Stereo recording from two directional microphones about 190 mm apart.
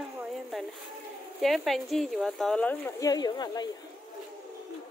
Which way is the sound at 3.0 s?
20° left (ahead or behind).